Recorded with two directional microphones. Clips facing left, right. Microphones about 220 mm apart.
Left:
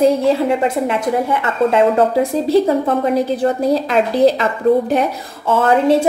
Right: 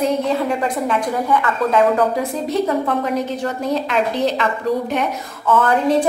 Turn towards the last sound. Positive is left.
turn(degrees=25)  # may be behind; listen again after turning